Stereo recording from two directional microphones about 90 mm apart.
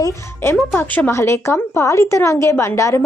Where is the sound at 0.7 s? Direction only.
25° left (ahead or behind).